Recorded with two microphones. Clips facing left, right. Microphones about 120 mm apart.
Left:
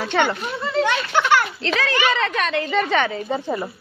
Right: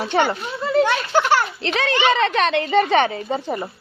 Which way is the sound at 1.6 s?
20° right (ahead or behind).